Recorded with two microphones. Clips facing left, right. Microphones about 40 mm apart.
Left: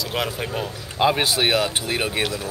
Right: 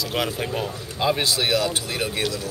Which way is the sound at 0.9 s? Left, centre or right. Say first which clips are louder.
Left 3 dB; left.